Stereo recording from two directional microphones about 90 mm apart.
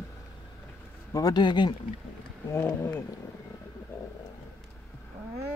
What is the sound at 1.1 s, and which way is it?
Speech, 50° left (ahead or behind).